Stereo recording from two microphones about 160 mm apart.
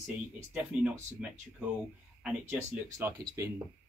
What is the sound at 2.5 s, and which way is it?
Speech, 15° right (ahead or behind).